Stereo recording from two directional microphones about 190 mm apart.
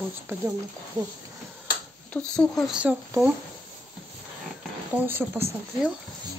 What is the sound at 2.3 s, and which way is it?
Speech, 5° left (ahead or behind).